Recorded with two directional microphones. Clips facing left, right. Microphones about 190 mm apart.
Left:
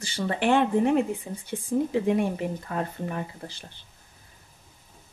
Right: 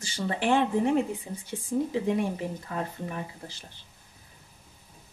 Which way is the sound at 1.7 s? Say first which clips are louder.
Left 3 dB; 55° left (ahead or behind).